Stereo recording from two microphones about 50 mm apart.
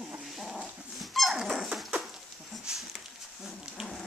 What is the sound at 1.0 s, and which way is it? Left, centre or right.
Dog, centre.